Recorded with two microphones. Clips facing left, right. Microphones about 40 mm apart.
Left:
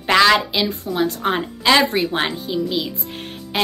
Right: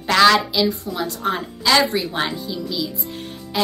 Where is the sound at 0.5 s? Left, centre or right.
Left.